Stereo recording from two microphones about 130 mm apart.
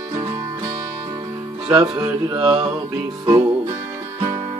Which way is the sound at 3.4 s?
20° right (ahead or behind).